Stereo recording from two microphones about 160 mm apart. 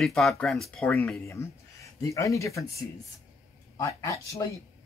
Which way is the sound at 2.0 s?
20° left (ahead or behind).